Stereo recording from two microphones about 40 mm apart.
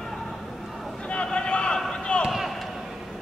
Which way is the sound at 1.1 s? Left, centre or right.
Left.